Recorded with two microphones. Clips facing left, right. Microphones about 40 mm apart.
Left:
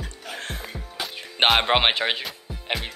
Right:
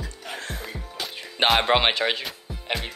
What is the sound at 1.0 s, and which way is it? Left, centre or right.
Music, centre.